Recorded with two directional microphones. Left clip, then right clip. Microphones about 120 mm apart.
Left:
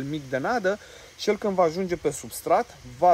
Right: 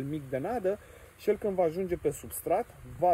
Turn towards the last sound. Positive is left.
turn(degrees=30)  # may be behind; listen again after turning